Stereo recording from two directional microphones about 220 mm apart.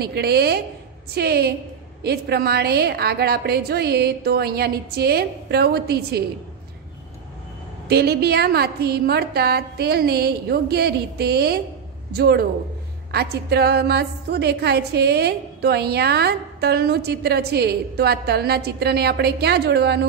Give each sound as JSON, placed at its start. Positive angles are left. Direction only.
{"t": 0.0, "sound": "a woman's voice", "side_deg": -45}
{"t": 7.9, "sound": "a woman's voice", "side_deg": -45}